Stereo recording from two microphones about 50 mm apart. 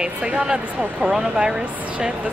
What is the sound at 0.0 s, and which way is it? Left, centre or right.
Speech, centre.